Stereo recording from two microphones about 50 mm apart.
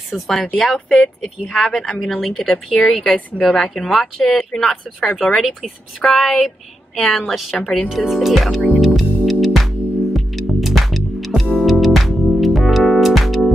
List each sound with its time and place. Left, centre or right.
0.1 s speech: centre
7.5 s speech: left
7.9 s speech: centre
8.7 s music: centre